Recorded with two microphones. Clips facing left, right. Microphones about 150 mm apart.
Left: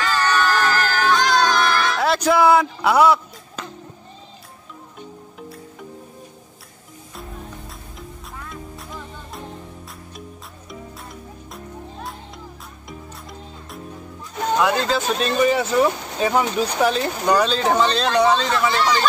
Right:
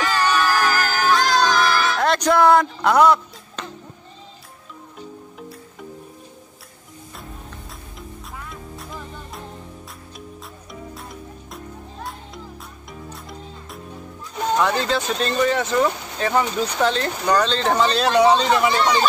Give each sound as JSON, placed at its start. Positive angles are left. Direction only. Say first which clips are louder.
{"t": 0.0, "sound": "music", "louder": "even", "side_deg": -15}
{"t": 8.5, "sound": "music", "louder": "even", "side_deg": 0}
{"t": 10.7, "sound": "music", "louder": "even", "side_deg": 0}
{"t": 14.6, "sound": "speech", "louder": "left 2 dB", "side_deg": 5}